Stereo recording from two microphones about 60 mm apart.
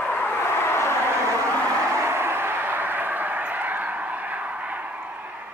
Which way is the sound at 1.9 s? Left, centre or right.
Right.